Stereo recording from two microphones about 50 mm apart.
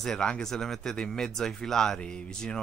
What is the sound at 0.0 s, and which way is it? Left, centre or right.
Speech, centre.